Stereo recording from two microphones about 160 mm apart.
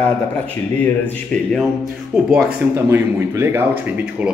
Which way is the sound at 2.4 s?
15° right (ahead or behind).